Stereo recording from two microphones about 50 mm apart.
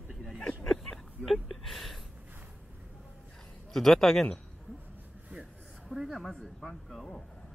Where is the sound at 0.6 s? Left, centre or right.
Centre.